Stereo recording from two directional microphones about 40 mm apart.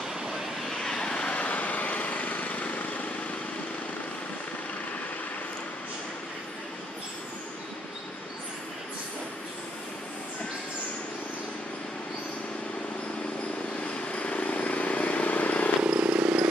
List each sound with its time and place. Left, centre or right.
0.7 s vehicle: centre
1.3 s vehicle: left
14.1 s vehicle: left
15.8 s vehicle: right